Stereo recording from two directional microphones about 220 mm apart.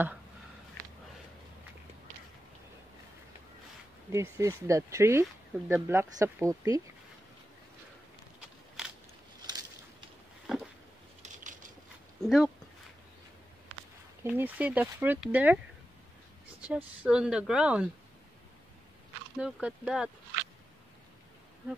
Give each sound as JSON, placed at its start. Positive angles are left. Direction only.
{"t": 4.1, "sound": "speech", "side_deg": -10}
{"t": 10.4, "sound": "a sound", "side_deg": -5}
{"t": 12.2, "sound": "speech", "side_deg": 0}
{"t": 14.2, "sound": "speech", "side_deg": -5}
{"t": 16.6, "sound": "speech", "side_deg": -5}
{"t": 19.3, "sound": "speech", "side_deg": -5}